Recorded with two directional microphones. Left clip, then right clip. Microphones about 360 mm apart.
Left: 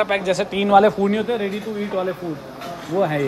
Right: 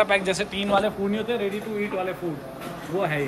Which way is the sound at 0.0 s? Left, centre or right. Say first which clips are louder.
Left 2 dB; centre.